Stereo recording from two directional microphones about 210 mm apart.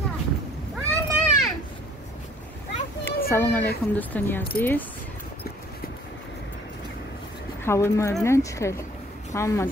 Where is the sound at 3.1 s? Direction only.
10° left (ahead or behind).